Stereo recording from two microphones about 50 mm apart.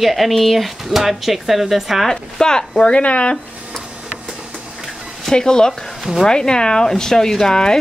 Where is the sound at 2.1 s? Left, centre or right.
Centre.